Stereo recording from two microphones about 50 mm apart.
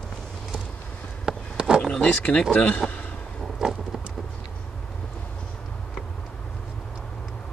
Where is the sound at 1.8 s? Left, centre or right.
Centre.